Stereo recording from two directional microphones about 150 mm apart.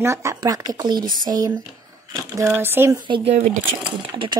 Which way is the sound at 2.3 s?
15° right (ahead or behind).